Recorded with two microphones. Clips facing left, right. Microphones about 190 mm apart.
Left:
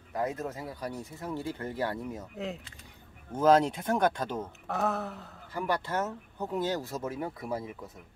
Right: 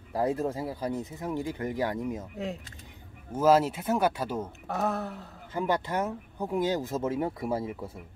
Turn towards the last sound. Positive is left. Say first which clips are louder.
# right 5 dB
turn(degrees=-30)  # may be behind; listen again after turning